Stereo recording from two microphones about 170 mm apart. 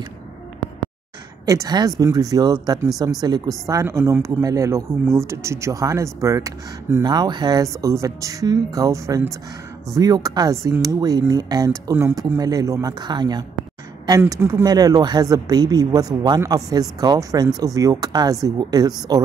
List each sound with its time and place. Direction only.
1.4 s a woman's voice: 20° right (ahead or behind)